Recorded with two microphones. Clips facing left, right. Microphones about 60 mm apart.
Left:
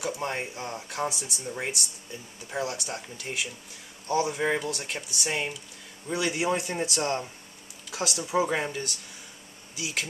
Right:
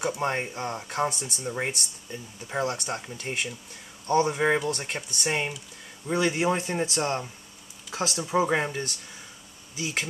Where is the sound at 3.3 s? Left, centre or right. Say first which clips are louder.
Right 2 dB; right.